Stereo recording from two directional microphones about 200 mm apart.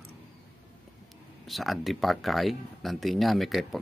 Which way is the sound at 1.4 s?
Centre (ahead or behind).